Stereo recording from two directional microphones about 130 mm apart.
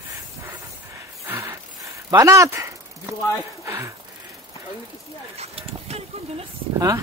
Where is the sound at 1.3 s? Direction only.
20° right (ahead or behind).